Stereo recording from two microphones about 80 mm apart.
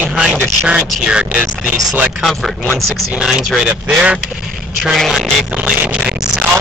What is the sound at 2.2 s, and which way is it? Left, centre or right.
Speech, centre.